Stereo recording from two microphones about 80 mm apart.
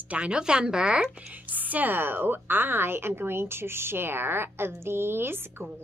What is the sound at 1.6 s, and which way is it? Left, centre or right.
A woman's voice, right.